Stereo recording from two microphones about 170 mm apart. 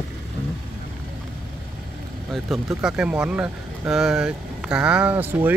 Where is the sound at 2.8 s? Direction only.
5° right (ahead or behind).